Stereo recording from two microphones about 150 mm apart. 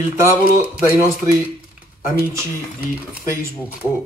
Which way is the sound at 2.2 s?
15° right (ahead or behind).